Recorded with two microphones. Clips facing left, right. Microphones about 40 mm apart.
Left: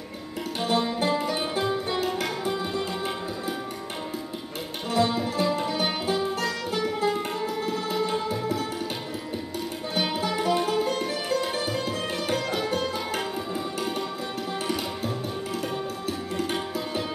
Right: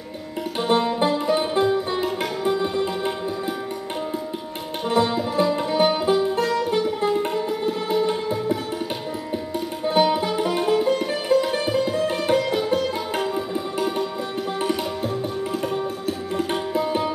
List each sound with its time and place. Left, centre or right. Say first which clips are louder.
0.6 s music: right 5 dB; right
4.9 s music: right 4 dB; centre
10.1 s music: right 3 dB; centre
15.6 s tabla: right 5 dB; right